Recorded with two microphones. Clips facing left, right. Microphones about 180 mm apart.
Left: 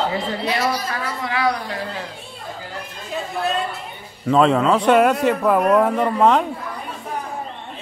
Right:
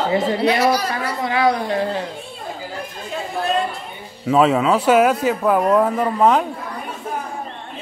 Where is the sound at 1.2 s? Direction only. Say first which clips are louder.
Right 4 dB; 25° right (ahead or behind).